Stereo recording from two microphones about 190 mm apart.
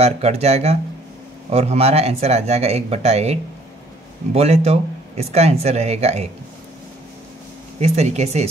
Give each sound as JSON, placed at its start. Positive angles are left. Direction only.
{"t": 0.0, "sound": "speech", "side_deg": -35}
{"t": 7.8, "sound": "speech", "side_deg": -35}